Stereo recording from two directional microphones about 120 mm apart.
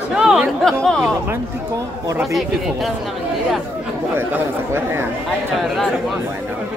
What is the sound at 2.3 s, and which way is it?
Speech, centre (ahead or behind).